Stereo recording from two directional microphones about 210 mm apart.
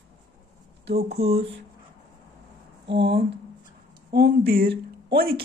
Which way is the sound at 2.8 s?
55° right (ahead or behind).